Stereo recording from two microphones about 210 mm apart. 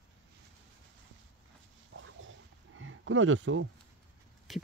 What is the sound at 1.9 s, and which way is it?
Dog, 65° right (ahead or behind).